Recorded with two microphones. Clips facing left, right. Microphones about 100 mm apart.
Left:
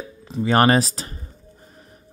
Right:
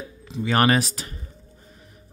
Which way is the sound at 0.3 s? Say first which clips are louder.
Left 3 dB; 35° left (ahead or behind).